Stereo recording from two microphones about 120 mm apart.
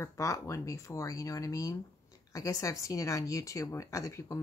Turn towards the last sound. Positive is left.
turn(degrees=25)  # may be behind; listen again after turning